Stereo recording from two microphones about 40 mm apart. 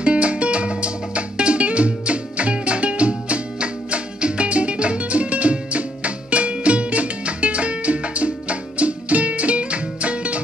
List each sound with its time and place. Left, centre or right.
0.0 s music: right